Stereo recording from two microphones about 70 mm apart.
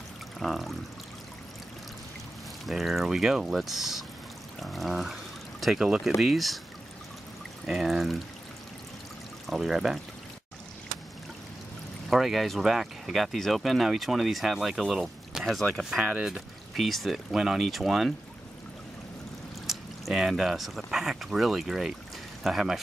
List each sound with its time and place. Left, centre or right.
0.4 s speech: centre
2.6 s speech: centre
7.6 s speech: centre
9.5 s speech: centre
12.1 s speech: centre
16.0 s speech: centre
16.7 s speech: centre
19.6 s speech: centre